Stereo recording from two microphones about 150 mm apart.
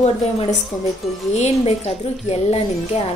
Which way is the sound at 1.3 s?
45° left (ahead or behind).